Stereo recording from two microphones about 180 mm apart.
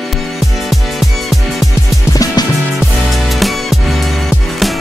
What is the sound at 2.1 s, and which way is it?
Music, 20° left (ahead or behind).